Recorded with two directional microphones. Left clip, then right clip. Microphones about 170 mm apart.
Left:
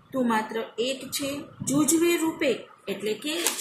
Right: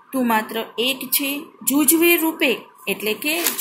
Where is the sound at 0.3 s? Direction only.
45° right (ahead or behind).